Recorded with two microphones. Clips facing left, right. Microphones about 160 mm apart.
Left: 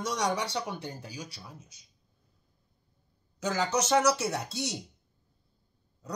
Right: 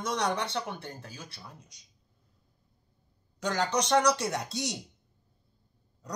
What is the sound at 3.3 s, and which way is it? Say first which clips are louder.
Speech: even; 5° left (ahead or behind).